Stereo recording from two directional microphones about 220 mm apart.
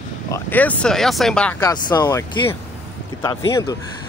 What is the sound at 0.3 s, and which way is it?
Speech, 10° left (ahead or behind).